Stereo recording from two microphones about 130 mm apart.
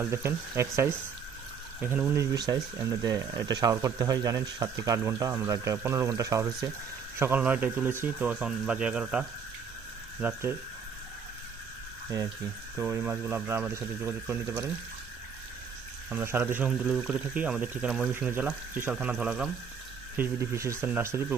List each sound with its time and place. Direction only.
0.0 s speech: 20° right (ahead or behind)
2.3 s speech: 30° right (ahead or behind)
7.2 s speech: 15° right (ahead or behind)
12.7 s speech: 15° right (ahead or behind)
16.1 s speech: 15° right (ahead or behind)
20.2 s speech: 20° right (ahead or behind)